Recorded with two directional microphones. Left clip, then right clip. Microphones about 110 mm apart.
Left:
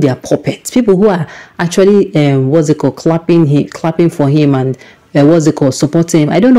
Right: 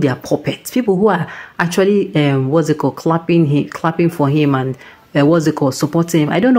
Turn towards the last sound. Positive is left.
turn(degrees=45)  # may be behind; listen again after turning